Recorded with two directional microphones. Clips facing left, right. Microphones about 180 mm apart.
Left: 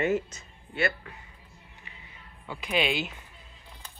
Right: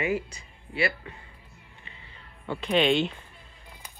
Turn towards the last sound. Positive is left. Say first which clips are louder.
# right 5 dB
turn(degrees=5)  # may be behind; listen again after turning